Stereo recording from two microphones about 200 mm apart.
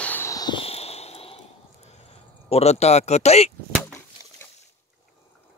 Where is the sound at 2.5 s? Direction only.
30° left (ahead or behind).